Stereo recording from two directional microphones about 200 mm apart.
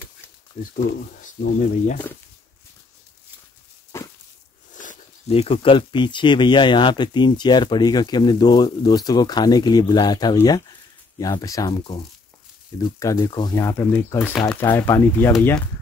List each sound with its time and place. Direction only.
0.6 s speech: 40° left (ahead or behind)
3.9 s dog: 10° left (ahead or behind)
4.7 s speech: 35° left (ahead or behind); by 15.3 s 10° left (ahead or behind)